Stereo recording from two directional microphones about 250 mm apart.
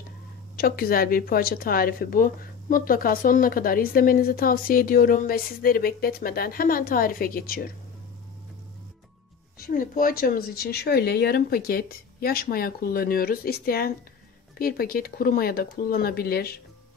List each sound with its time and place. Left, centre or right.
0.6 s speech: left
9.6 s speech: left